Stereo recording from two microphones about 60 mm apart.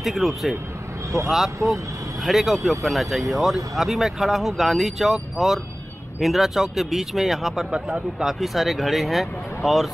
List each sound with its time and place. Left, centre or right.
0.0 s speech: centre
1.6 s speech: right
2.2 s speech: centre